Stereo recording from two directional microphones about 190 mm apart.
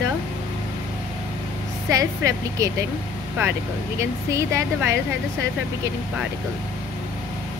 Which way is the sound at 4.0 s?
15° right (ahead or behind).